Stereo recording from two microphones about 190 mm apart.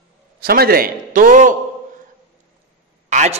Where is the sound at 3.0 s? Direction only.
40° right (ahead or behind).